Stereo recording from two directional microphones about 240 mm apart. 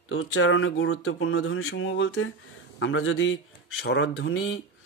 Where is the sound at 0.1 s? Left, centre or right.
Left.